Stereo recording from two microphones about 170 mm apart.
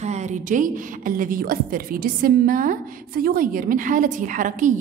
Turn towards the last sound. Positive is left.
turn(degrees=-50)  # may be behind; listen again after turning